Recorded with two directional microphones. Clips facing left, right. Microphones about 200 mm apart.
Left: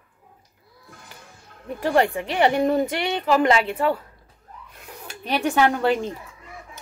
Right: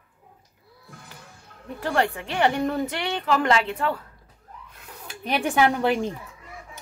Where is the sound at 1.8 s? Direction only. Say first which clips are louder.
Left 4 dB; 15° left (ahead or behind).